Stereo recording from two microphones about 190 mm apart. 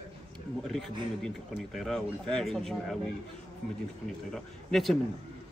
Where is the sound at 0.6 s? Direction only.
Centre (ahead or behind).